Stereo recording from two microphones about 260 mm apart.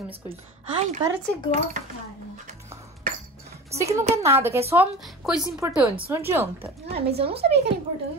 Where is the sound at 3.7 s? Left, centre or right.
Centre.